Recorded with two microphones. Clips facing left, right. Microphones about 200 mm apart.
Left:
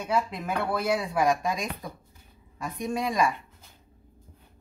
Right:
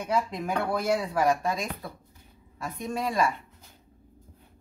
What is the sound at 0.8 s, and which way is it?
Speech, 10° left (ahead or behind).